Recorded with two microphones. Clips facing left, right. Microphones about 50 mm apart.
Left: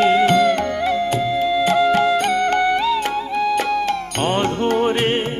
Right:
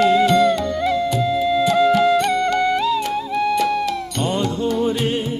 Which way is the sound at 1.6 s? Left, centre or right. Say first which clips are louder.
Right 1 dB; left.